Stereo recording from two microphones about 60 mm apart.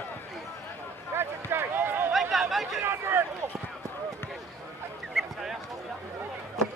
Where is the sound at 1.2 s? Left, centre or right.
Right.